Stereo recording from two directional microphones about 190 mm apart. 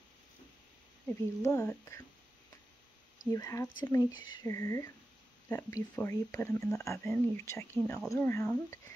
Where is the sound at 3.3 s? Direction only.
15° left (ahead or behind).